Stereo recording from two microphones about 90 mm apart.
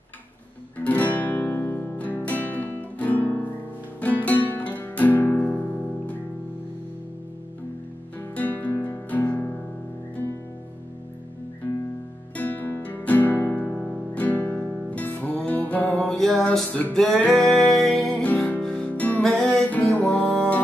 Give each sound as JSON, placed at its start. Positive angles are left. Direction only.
{"t": 0.7, "sound": "guitar", "side_deg": 20}
{"t": 4.0, "sound": "music", "side_deg": 15}
{"t": 8.2, "sound": "music", "side_deg": 20}
{"t": 12.4, "sound": "music", "side_deg": 20}
{"t": 13.7, "sound": "music", "side_deg": 5}
{"t": 14.1, "sound": "music", "side_deg": 20}
{"t": 18.2, "sound": "music", "side_deg": 15}